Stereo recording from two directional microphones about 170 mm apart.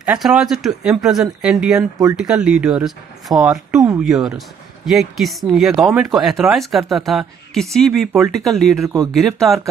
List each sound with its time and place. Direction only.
0.0 s speech: 5° right (ahead or behind)
1.8 s speech: 20° right (ahead or behind)
2.1 s speech: 5° right (ahead or behind)
8.8 s speech: 20° right (ahead or behind)
9.1 s speech: centre (ahead or behind)